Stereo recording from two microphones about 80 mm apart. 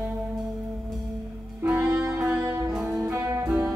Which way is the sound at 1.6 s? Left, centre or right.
Right.